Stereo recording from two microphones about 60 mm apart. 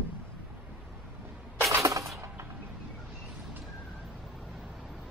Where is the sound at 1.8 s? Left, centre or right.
Right.